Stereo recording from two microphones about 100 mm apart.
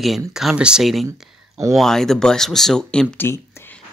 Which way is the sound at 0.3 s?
5° right (ahead or behind).